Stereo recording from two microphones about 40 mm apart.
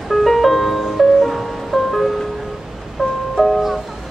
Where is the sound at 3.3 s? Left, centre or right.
Centre.